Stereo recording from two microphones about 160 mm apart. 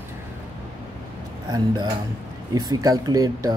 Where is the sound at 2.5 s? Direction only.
25° right (ahead or behind).